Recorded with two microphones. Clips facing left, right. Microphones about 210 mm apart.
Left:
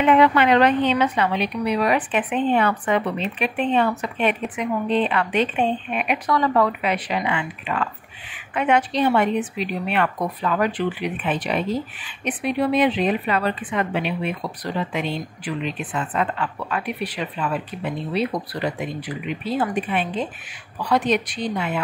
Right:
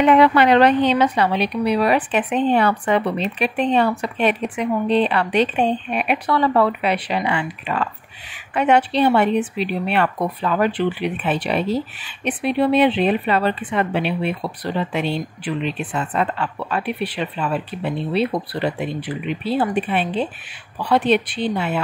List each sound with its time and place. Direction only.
0.0 s a woman's voice: 35° right (ahead or behind)
15.0 s speech: 75° right (ahead or behind)
15.9 s a woman's voice: 30° right (ahead or behind)
21.1 s a woman's voice: 30° right (ahead or behind)